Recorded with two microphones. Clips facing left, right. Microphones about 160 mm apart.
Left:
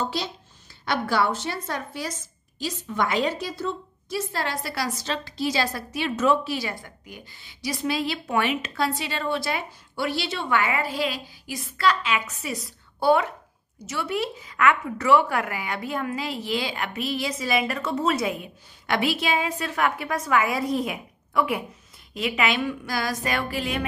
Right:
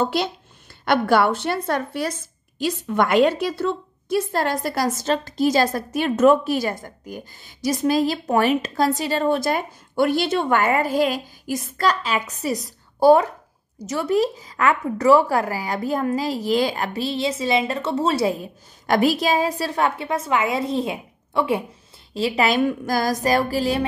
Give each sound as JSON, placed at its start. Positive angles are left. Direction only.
{"t": 0.0, "sound": "a woman's voice", "side_deg": -60}